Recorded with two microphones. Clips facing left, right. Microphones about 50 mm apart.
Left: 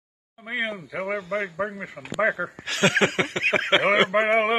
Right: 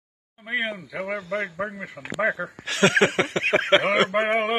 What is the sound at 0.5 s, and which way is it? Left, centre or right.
Speech, right.